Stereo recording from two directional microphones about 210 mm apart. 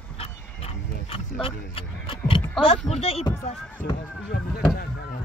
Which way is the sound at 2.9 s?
30° left (ahead or behind).